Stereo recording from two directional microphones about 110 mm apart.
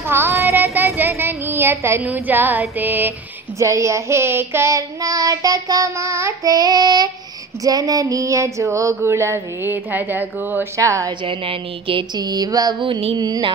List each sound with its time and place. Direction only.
0.0 s speech: 20° right (ahead or behind)
2.8 s a sound: 15° right (ahead or behind)
3.5 s child singing: 30° right (ahead or behind)
10.8 s child singing: 30° right (ahead or behind)
11.2 s a woman's voice: 50° right (ahead or behind)
12.2 s a sound: 35° right (ahead or behind)